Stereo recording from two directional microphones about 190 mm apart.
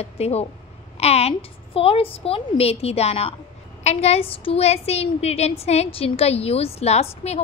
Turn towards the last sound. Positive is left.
turn(degrees=35)  # may be behind; listen again after turning